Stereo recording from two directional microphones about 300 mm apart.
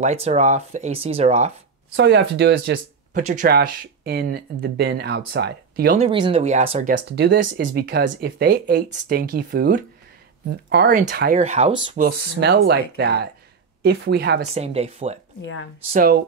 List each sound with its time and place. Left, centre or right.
0.0 s speech: right
2.0 s speech: right
5.9 s speech: centre
12.1 s speech: right
14.4 s speech: right